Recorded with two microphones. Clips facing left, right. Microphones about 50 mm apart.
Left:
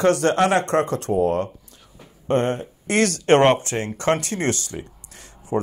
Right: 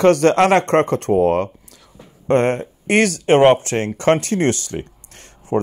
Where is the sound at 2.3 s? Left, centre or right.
Right.